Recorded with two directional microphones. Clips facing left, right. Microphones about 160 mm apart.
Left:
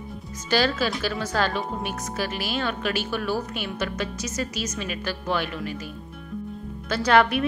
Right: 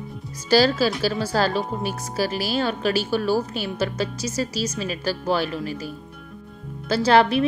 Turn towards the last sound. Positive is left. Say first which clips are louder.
# right 3 dB
turn(degrees=-30)  # may be behind; listen again after turning